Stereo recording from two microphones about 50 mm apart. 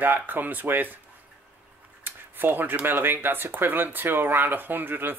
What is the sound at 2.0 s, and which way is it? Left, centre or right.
Speech, right.